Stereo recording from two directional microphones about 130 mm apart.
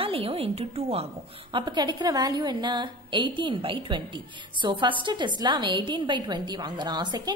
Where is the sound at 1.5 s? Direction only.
35° right (ahead or behind).